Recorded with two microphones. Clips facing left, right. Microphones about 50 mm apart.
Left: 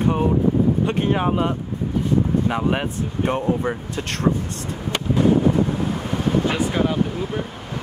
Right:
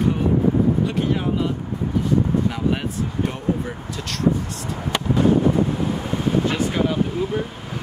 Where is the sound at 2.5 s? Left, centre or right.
Left.